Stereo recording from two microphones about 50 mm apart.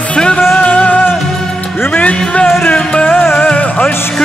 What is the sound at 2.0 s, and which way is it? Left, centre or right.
Speech, left.